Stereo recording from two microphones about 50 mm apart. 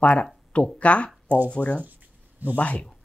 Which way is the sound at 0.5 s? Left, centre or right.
Left.